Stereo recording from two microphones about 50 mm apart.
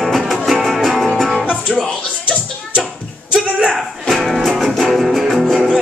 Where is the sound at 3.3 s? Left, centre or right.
Centre.